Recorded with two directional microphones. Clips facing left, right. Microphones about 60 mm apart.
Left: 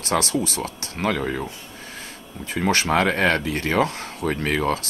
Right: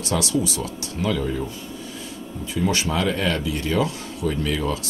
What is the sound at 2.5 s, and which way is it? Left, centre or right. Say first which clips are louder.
Speech: left 3 dB; left.